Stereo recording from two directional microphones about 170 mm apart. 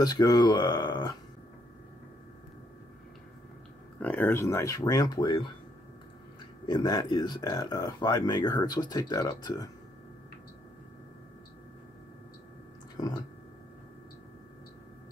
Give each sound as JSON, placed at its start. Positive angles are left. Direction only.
{"t": 0.0, "sound": "speech", "side_deg": 25}
{"t": 4.0, "sound": "speech", "side_deg": 10}
{"t": 6.6, "sound": "speech", "side_deg": 25}
{"t": 12.9, "sound": "a sound", "side_deg": 25}